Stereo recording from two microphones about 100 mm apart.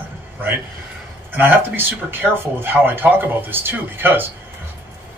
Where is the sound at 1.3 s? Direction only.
20° right (ahead or behind).